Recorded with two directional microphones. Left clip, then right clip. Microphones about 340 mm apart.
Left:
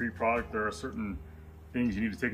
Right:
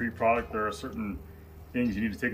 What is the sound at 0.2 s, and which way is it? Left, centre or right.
Speech, centre.